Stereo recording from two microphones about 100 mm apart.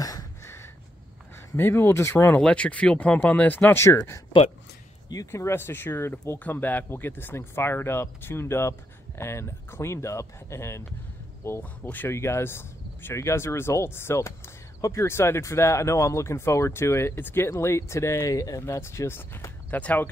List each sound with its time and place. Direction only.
0.4 s a sound: 25° left (ahead or behind)
1.5 s speech: 20° left (ahead or behind)
2.3 s speech: 10° left (ahead or behind)